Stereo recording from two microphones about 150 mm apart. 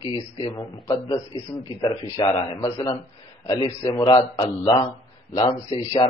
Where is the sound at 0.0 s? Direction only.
35° left (ahead or behind).